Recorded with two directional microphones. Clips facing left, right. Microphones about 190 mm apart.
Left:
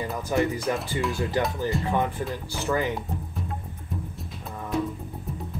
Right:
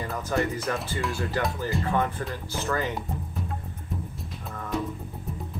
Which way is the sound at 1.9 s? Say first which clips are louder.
Left 1 dB; 15° left (ahead or behind).